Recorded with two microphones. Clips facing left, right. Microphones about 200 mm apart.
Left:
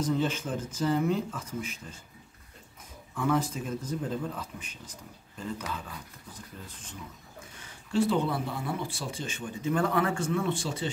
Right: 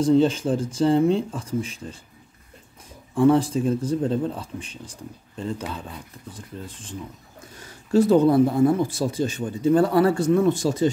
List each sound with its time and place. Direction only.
0.0 s speech: 30° right (ahead or behind)
3.2 s speech: 30° right (ahead or behind)
7.5 s speech: 40° right (ahead or behind)